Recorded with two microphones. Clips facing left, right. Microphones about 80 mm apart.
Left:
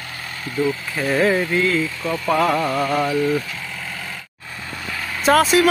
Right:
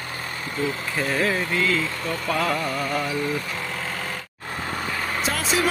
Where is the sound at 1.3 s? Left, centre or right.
Left.